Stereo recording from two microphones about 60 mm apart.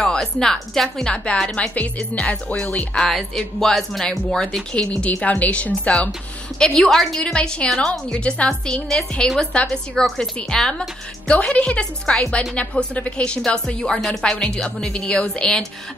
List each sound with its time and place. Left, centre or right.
0.0 s speech: centre
1.0 s a woman's voice: centre
3.0 s speech: centre
4.7 s a woman's voice: left
6.6 s a woman's voice: centre
8.1 s a woman's voice: centre